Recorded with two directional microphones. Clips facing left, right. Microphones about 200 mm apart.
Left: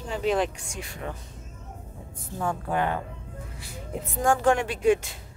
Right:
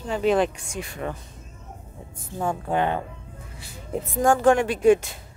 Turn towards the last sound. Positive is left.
turn(degrees=-50)  # may be behind; listen again after turning